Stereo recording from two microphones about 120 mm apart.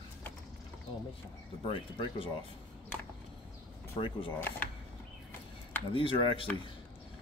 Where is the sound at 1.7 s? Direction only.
45° left (ahead or behind).